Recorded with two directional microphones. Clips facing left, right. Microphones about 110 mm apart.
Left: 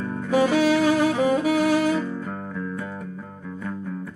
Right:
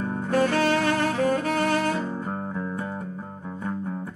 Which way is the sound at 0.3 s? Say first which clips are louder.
Left 3 dB; 10° left (ahead or behind).